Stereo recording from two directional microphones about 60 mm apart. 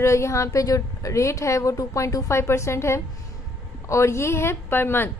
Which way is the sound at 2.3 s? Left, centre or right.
Left.